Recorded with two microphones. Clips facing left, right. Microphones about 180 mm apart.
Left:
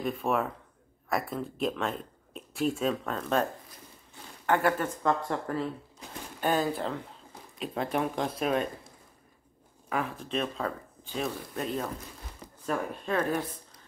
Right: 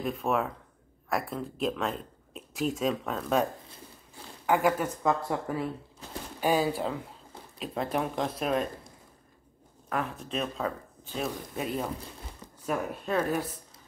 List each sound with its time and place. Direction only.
0.0 s speech: centre (ahead or behind)
4.5 s speech: 10° right (ahead or behind)
9.8 s speech: centre (ahead or behind)